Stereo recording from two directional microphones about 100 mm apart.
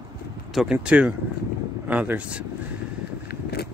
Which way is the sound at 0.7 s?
10° right (ahead or behind).